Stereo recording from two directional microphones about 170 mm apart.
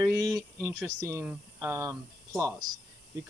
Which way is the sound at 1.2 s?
15° right (ahead or behind).